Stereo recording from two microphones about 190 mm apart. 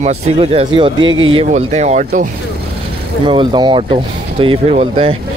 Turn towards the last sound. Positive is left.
turn(degrees=-30)  # may be behind; listen again after turning